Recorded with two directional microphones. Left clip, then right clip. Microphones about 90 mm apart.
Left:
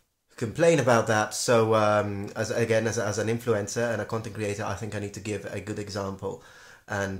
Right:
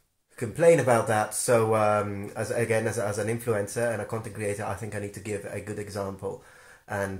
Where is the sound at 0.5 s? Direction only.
40° left (ahead or behind).